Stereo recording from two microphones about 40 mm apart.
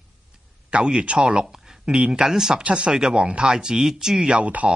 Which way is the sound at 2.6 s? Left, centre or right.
Right.